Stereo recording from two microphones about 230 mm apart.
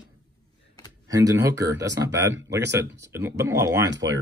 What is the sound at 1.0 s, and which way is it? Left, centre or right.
Speech, centre.